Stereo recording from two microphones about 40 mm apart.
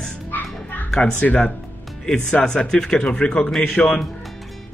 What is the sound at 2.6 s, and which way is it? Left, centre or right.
Speech, centre.